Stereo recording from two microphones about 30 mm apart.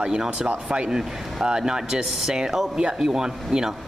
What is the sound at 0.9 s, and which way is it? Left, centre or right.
Speech, centre.